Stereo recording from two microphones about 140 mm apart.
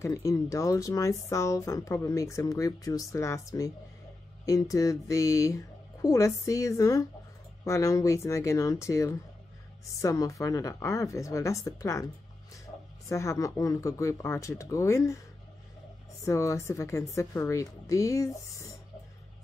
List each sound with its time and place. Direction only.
0.0 s speech: 20° left (ahead or behind)
13.1 s speech: 20° left (ahead or behind)
16.3 s speech: 20° left (ahead or behind)